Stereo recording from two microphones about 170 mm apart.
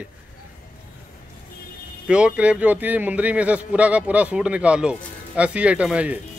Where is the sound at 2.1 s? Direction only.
5° right (ahead or behind).